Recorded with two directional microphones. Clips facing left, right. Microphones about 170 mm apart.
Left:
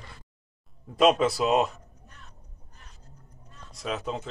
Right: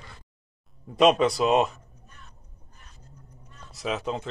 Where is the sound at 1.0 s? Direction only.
Centre (ahead or behind).